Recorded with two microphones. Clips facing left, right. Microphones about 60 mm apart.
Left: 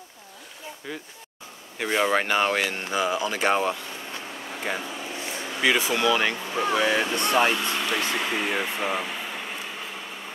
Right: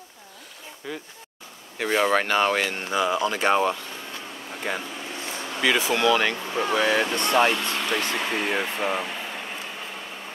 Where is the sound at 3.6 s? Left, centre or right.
Centre.